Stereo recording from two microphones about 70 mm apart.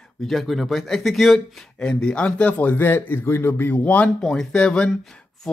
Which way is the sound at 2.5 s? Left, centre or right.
Left.